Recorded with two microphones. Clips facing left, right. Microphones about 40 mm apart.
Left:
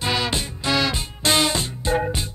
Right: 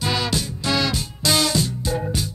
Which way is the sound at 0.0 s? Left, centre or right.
Left.